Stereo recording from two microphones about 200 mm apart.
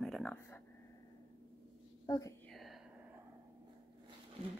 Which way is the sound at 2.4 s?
Centre (ahead or behind).